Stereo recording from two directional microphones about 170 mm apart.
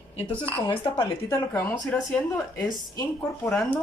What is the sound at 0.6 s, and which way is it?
Speech, 30° left (ahead or behind).